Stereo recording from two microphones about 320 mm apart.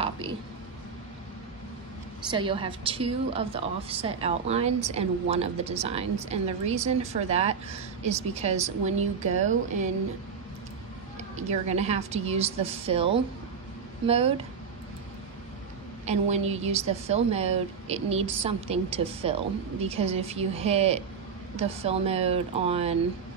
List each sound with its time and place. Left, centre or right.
0.0 s a sound: centre
2.3 s a woman's voice: centre
11.3 s a woman's voice: right
16.1 s a woman's voice: centre